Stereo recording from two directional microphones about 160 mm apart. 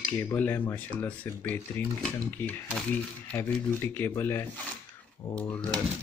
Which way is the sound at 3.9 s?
15° left (ahead or behind).